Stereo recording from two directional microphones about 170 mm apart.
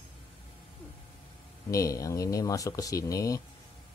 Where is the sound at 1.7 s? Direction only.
20° left (ahead or behind).